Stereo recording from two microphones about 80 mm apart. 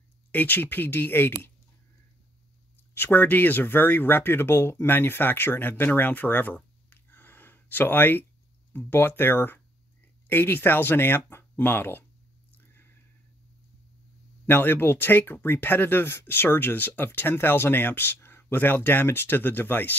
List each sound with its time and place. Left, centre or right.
0.3 s speech: left
2.9 s speech: left
12.5 s a sound: left
14.4 s speech: left